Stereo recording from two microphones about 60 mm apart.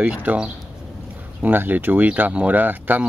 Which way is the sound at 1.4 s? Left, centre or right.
Right.